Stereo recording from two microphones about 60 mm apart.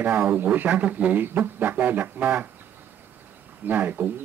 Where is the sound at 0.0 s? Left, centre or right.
Right.